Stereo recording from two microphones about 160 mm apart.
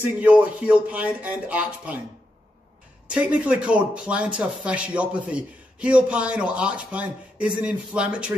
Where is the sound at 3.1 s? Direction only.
5° right (ahead or behind).